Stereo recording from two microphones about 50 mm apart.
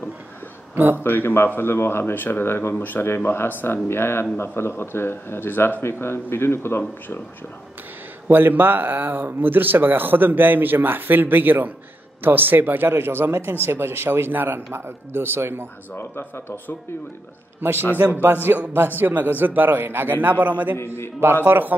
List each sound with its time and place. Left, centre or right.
0.9 s speech: left
8.3 s speech: right
16.0 s speech: left
17.6 s a man's voice: right
20.7 s speech: left
21.5 s speech: right